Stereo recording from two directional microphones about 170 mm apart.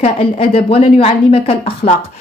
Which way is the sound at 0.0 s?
35° left (ahead or behind).